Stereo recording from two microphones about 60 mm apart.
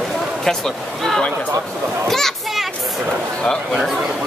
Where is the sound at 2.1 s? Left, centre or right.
Centre.